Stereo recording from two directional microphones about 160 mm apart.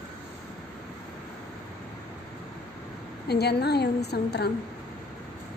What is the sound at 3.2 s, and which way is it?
A woman's voice, 90° left.